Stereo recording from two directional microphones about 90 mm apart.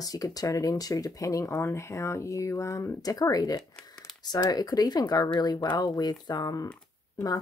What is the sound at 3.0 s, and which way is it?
Speech, 45° left (ahead or behind).